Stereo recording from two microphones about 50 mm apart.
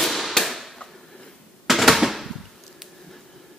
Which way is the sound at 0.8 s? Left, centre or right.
Centre.